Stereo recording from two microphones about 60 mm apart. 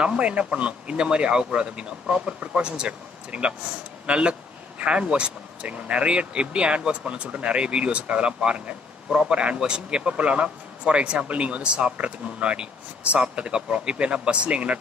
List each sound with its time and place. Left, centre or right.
0.0 s speech: centre